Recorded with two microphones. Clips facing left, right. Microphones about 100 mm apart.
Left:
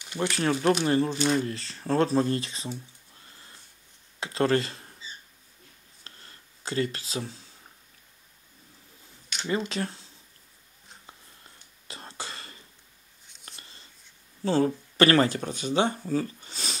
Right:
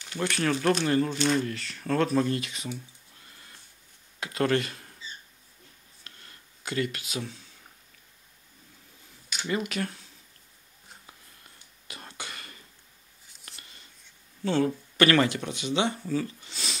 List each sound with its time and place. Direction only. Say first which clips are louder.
0.2 s speech: left 1 dB; 25° left (ahead or behind)
1.1 s speech: even; 10° left (ahead or behind)
1.4 s speech: even; 30° left (ahead or behind)
4.2 s speech: left 2 dB; 30° left (ahead or behind)
6.0 s a sound: left 1 dB; 30° left (ahead or behind)
9.5 s speech: left 1 dB; 30° left (ahead or behind)
11.9 s a sound: left 2 dB; 30° left (ahead or behind)
13.5 s writing: left 1 dB; 30° left (ahead or behind)
14.4 s speech: left 2 dB; 35° left (ahead or behind)
16.1 s a sound: left 1 dB; 40° left (ahead or behind)